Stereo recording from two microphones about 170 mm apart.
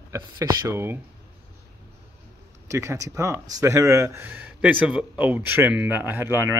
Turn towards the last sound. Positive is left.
turn(degrees=-15)  # may be behind; listen again after turning